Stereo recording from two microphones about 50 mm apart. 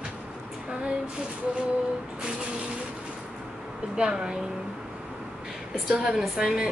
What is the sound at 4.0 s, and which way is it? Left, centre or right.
Speech, centre.